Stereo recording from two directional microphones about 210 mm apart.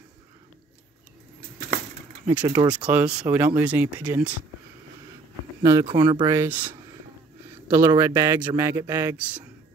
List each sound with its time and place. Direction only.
2.4 s a man's voice: 15° right (ahead or behind)
2.7 s a man's voice: 5° right (ahead or behind)
5.6 s a man's voice: 15° right (ahead or behind)
7.7 s a man's voice: 15° right (ahead or behind)